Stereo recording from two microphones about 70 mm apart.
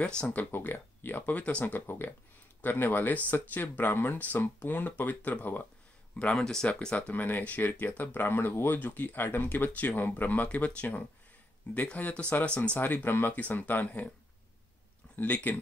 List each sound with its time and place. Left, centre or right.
0.0 s speech: centre
0.4 s speech: left
6.1 s speech: centre
7.2 s speech: left
15.1 s speech: left